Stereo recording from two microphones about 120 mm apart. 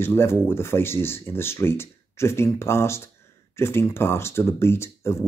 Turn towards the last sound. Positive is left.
turn(degrees=20)  # may be behind; listen again after turning